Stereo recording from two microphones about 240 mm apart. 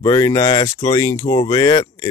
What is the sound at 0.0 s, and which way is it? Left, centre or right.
Speech, centre.